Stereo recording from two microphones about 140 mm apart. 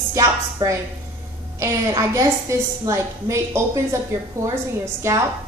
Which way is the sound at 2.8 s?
20° right (ahead or behind).